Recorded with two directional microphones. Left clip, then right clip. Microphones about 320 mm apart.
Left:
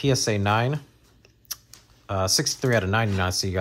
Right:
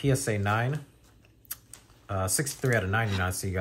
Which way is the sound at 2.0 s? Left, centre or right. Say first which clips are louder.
Left 7 dB; centre.